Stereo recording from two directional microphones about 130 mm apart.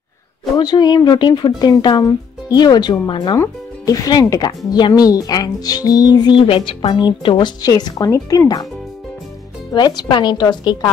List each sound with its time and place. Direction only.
0.6 s speech: 35° left (ahead or behind)
9.7 s speech: 30° left (ahead or behind)